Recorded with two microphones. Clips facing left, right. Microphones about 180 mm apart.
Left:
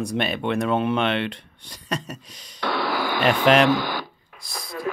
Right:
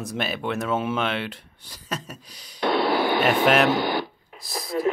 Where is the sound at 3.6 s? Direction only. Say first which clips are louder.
Even; 25° right (ahead or behind).